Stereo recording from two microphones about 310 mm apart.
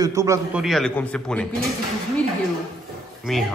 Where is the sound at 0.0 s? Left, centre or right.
Centre.